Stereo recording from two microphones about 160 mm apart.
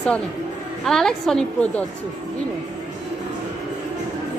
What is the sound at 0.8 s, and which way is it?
A woman's voice, 5° left (ahead or behind).